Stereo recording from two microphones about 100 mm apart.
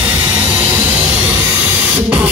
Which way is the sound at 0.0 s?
15° right (ahead or behind).